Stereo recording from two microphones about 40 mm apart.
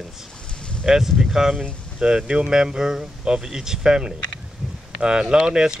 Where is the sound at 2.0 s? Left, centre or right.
Centre.